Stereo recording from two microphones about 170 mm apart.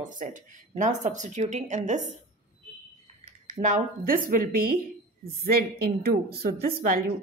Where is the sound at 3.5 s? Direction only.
50° right (ahead or behind).